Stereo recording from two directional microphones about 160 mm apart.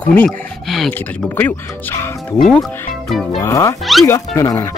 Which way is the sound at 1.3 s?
15° left (ahead or behind).